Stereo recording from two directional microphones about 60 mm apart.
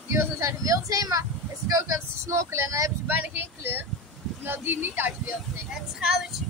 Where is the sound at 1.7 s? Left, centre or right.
Right.